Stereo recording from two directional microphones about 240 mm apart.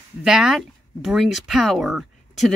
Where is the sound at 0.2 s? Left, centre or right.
Centre.